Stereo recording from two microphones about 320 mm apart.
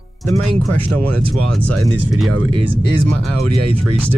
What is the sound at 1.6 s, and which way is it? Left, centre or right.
Speech, right.